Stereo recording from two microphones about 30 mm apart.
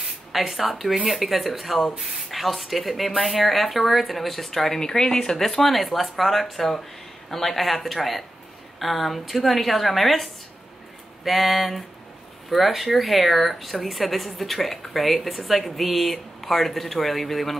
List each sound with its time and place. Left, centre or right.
0.3 s speech: centre
4.5 s speech: centre
5.4 s speech: centre